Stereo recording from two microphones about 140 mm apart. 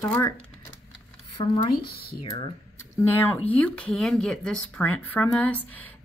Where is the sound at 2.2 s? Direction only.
35° left (ahead or behind).